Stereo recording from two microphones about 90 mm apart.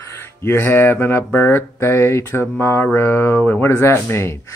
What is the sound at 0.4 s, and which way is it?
Mantra, 30° left (ahead or behind).